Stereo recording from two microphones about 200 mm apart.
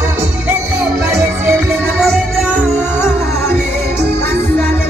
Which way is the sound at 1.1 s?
10° right (ahead or behind).